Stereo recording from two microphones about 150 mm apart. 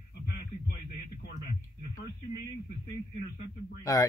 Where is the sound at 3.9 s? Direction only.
25° left (ahead or behind).